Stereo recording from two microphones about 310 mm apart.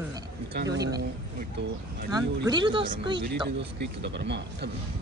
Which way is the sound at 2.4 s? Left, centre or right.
Centre.